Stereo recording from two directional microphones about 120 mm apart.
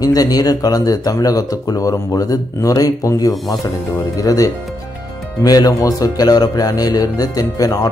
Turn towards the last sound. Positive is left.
turn(degrees=30)  # may be behind; listen again after turning